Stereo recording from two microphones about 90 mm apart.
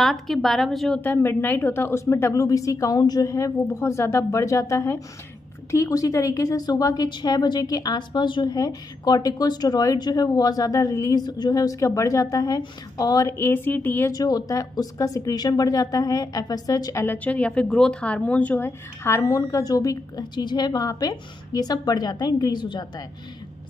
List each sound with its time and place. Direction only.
0.0 s a woman's voice: centre (ahead or behind)
1.0 s a woman's voice: 25° left (ahead or behind); by 8.5 s 60° left (ahead or behind)
8.5 s a woman's voice: 45° left (ahead or behind)
13.4 s a woman's voice: 20° left (ahead or behind)
14.1 s speech: 45° left (ahead or behind)
17.0 s a woman's voice: 20° left (ahead or behind); by 20.2 s 40° left (ahead or behind)
20.3 s speech: 55° left (ahead or behind)